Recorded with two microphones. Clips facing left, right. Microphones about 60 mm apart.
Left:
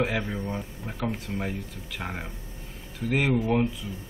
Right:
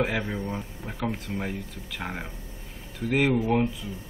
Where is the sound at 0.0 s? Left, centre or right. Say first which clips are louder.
Even; centre.